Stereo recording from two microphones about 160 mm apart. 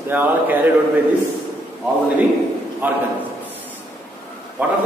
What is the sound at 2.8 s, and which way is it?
Speech, 10° right (ahead or behind).